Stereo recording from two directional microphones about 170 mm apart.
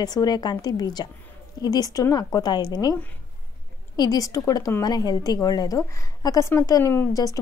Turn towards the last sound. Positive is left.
turn(degrees=20)  # may be behind; listen again after turning